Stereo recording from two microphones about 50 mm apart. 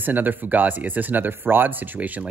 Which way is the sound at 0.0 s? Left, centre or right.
Right.